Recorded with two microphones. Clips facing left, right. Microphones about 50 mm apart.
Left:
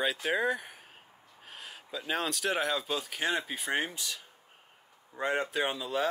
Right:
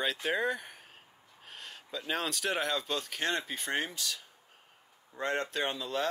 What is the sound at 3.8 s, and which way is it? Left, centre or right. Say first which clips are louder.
Speech: left 1 dB; centre.